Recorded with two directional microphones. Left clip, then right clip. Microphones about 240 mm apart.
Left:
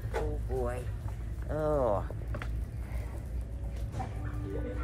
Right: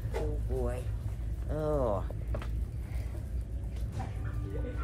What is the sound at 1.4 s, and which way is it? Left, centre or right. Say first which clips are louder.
Speech: left 2 dB; centre.